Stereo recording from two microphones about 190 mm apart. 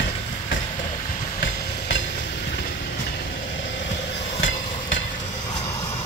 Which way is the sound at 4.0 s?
65° left (ahead or behind).